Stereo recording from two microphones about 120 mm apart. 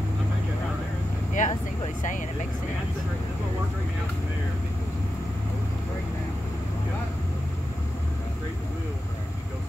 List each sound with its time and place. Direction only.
1.4 s speech: 90° left